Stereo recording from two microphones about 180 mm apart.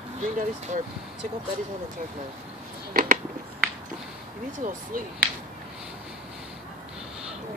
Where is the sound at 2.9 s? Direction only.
50° right (ahead or behind).